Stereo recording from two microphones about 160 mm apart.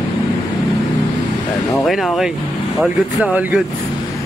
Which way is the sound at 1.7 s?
Centre (ahead or behind).